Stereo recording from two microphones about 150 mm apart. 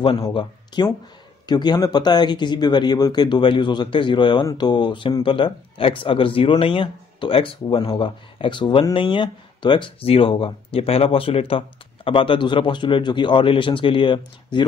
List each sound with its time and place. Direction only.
0.3 s speech: 30° left (ahead or behind)